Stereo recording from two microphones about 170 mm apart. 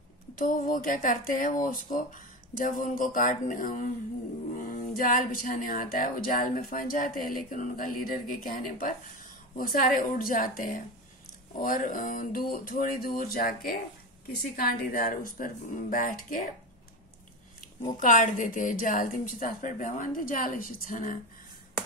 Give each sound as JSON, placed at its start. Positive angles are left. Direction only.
{"t": 0.4, "sound": "a woman's voice", "side_deg": 55}
{"t": 17.6, "sound": "a woman's voice", "side_deg": 50}